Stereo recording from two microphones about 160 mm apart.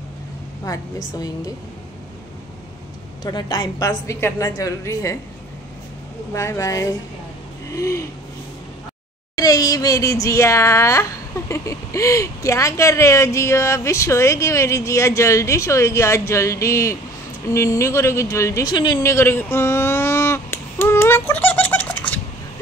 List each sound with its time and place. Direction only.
0.7 s speech: 20° left (ahead or behind)
3.3 s speech: 25° left (ahead or behind)
6.3 s speech: 20° left (ahead or behind)
9.3 s speech: 25° left (ahead or behind)
18.9 s a sound: 15° left (ahead or behind)